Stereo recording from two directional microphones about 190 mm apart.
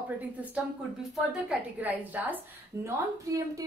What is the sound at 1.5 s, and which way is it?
A woman's voice, 10° right (ahead or behind).